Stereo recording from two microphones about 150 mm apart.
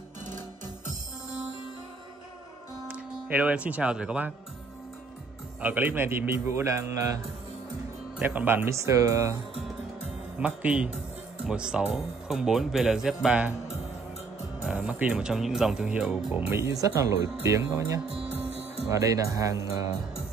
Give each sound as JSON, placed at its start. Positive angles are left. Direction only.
{"t": 2.9, "sound": "speech", "side_deg": -10}
{"t": 5.6, "sound": "speech", "side_deg": -10}
{"t": 8.2, "sound": "speech", "side_deg": -10}
{"t": 10.4, "sound": "speech", "side_deg": -10}
{"t": 14.7, "sound": "speech", "side_deg": -10}